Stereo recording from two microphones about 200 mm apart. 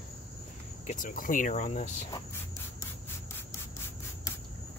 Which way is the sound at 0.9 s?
40° left (ahead or behind).